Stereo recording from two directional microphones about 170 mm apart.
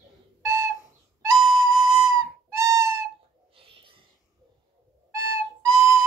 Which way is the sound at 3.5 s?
30° right (ahead or behind).